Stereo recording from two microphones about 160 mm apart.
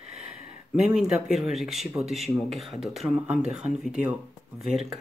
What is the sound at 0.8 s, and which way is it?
Speech, 5° right (ahead or behind).